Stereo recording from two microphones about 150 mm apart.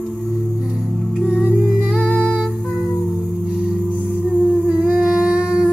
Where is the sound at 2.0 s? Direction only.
10° left (ahead or behind).